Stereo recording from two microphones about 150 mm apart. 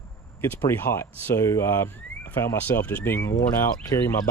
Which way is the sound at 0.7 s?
15° left (ahead or behind).